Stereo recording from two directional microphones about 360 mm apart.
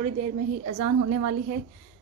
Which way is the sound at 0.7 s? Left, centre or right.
Right.